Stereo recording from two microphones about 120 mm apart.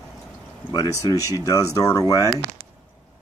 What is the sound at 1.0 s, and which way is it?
Speech, 25° left (ahead or behind).